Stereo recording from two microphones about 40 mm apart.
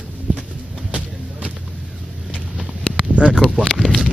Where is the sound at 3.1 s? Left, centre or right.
Right.